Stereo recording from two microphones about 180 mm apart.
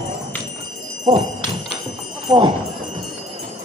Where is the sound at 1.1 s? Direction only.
30° right (ahead or behind).